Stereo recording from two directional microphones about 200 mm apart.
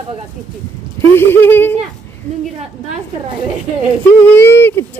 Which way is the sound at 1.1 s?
10° left (ahead or behind).